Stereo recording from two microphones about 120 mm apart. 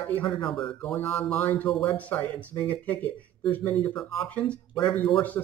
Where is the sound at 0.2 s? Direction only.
40° left (ahead or behind).